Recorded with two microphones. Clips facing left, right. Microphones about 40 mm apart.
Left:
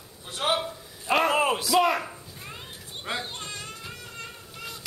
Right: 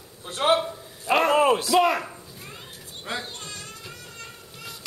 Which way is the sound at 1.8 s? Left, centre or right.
Centre.